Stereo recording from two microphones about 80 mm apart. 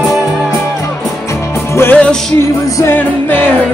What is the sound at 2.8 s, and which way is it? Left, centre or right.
Music, left.